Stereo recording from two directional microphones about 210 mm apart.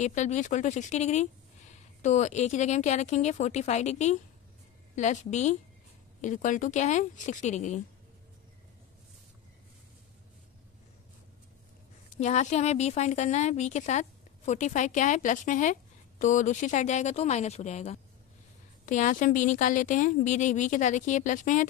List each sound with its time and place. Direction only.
0.0 s a woman's voice: 35° left (ahead or behind)
12.2 s a woman's voice: 35° left (ahead or behind)